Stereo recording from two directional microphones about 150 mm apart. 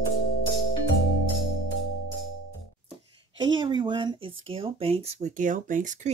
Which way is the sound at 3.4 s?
30° right (ahead or behind).